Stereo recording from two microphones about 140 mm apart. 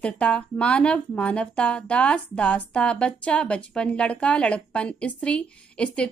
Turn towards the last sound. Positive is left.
turn(degrees=5)  # may be behind; listen again after turning